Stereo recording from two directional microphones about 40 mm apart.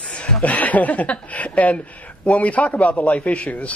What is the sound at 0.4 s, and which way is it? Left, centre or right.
A man's voice, left.